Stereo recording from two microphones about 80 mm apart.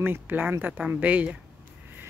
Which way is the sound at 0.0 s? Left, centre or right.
Right.